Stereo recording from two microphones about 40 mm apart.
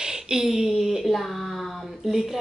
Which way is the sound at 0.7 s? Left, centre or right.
Centre.